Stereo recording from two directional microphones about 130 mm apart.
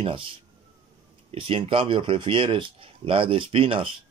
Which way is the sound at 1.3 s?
45° right (ahead or behind).